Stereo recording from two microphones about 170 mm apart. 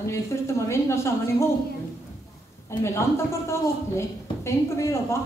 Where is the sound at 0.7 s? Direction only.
15° left (ahead or behind).